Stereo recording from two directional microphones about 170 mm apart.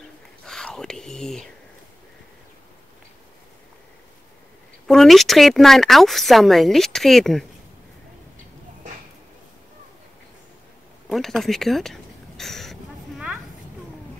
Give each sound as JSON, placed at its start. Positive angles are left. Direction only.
{"t": 0.5, "sound": "speech", "side_deg": 5}
{"t": 4.8, "sound": "speech", "side_deg": 0}
{"t": 11.1, "sound": "a sound", "side_deg": 0}